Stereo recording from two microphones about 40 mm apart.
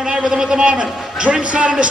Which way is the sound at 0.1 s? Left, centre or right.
Centre.